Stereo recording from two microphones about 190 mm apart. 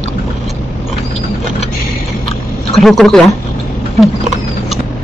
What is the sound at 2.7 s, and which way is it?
Speech, centre (ahead or behind).